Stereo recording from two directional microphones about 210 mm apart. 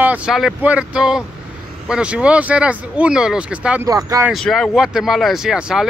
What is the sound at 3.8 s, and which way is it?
Speech, 15° right (ahead or behind).